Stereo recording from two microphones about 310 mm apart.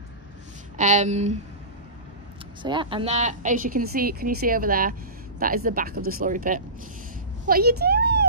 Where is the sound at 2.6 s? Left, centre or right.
Centre; by 8.3 s right.